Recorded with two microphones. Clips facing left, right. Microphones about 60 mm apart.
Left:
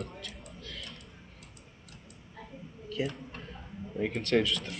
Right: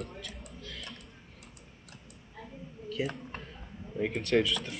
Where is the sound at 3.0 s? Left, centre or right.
Centre.